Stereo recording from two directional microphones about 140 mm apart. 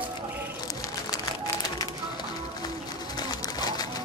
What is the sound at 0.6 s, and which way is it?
Music, 25° left (ahead or behind).